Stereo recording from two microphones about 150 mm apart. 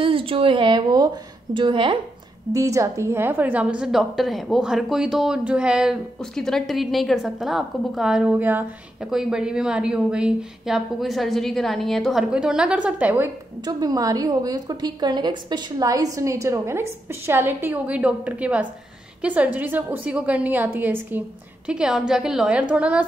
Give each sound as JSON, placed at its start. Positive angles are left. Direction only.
{"t": 0.0, "sound": "a woman's voice", "side_deg": -35}
{"t": 2.5, "sound": "a woman's voice", "side_deg": -20}
{"t": 13.7, "sound": "a woman's voice", "side_deg": -25}